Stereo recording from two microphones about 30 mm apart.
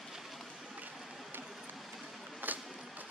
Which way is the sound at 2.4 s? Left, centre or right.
Right.